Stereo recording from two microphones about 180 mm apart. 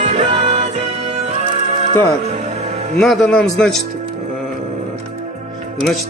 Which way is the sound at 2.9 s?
5° left (ahead or behind).